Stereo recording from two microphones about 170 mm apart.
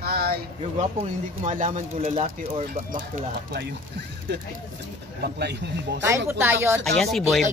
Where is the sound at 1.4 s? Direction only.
50° right (ahead or behind).